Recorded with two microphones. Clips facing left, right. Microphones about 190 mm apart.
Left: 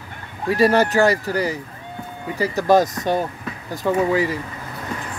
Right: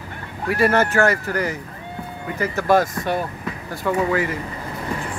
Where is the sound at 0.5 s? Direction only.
15° left (ahead or behind).